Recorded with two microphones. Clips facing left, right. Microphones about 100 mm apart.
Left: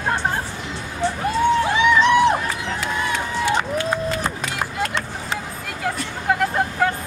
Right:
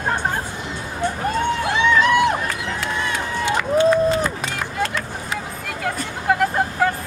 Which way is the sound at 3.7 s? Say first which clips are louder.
Right 7 dB; 25° right (ahead or behind).